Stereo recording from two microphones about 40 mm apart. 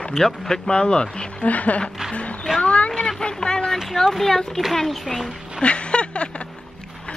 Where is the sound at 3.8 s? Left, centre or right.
Centre.